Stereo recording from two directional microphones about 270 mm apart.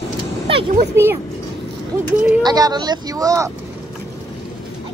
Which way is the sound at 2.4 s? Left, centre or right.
Centre.